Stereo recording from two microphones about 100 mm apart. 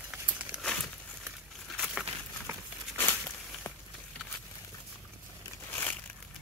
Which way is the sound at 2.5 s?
25° right (ahead or behind).